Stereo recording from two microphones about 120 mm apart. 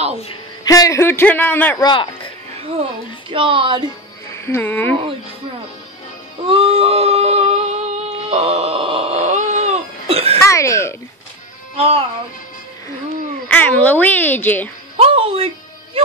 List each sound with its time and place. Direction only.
0.7 s a man's voice: 25° left (ahead or behind)
1.8 s speech: 40° left (ahead or behind)
3.3 s speech: 45° right (ahead or behind)
4.5 s a child's voice: 15° left (ahead or behind)
6.5 s a sound: 50° right (ahead or behind); by 9.8 s 75° right (ahead or behind)
10.0 s cough: 55° right (ahead or behind)
10.4 s cough: 25° left (ahead or behind)
11.7 s speech: 55° right (ahead or behind)
13.5 s a child's voice: 10° left (ahead or behind)
15.0 s music: 55° right (ahead or behind)